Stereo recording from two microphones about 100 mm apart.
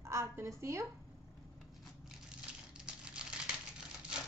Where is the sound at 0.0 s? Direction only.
30° right (ahead or behind).